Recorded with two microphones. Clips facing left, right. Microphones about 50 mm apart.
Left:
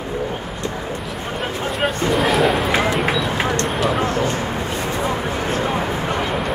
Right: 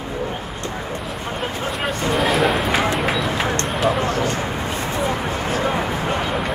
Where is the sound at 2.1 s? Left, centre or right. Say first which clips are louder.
Even; centre.